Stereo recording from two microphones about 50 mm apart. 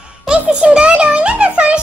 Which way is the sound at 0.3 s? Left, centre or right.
Centre.